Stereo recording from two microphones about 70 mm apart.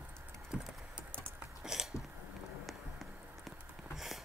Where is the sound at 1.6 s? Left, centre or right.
Centre.